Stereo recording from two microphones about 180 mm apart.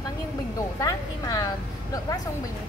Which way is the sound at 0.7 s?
20° left (ahead or behind).